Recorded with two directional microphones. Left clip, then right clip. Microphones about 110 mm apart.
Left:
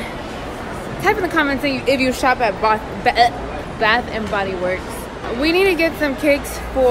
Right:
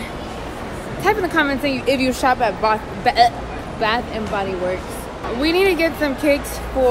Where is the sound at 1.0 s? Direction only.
5° right (ahead or behind).